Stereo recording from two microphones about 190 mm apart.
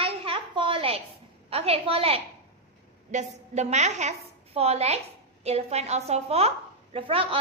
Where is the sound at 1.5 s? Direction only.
30° right (ahead or behind).